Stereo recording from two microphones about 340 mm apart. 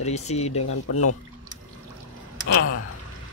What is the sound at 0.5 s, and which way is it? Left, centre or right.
Speech, left.